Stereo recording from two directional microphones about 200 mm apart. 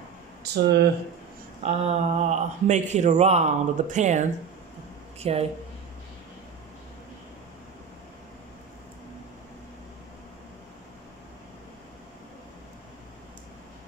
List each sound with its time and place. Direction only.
0.4 s speech: 55° right (ahead or behind)
1.6 s speech: 30° right (ahead or behind)